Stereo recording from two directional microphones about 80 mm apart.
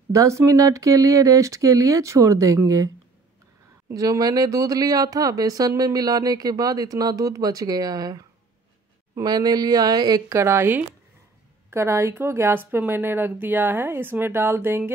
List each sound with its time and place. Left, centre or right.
0.1 s speech: right
3.9 s speech: right
9.2 s speech: right
10.3 s a woman's voice: right